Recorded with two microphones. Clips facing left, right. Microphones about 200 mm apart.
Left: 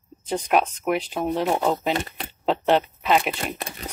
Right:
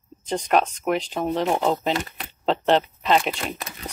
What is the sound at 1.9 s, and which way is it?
Speech, 30° left (ahead or behind).